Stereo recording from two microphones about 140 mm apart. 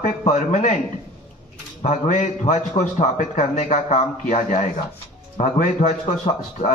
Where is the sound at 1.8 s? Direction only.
60° left (ahead or behind).